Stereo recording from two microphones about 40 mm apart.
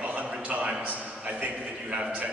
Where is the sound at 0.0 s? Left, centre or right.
Right.